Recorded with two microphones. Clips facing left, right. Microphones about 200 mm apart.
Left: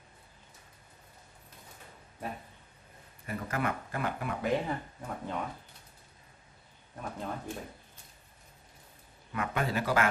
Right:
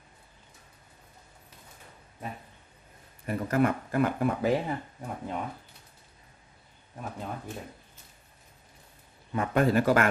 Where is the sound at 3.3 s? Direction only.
45° right (ahead or behind).